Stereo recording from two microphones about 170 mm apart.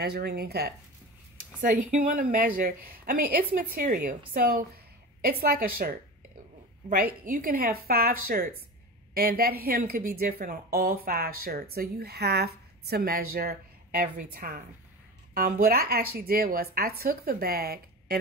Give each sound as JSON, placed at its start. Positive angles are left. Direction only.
{"t": 0.0, "sound": "speech", "side_deg": -70}
{"t": 1.6, "sound": "a woman's voice", "side_deg": -50}
{"t": 7.2, "sound": "speech", "side_deg": -55}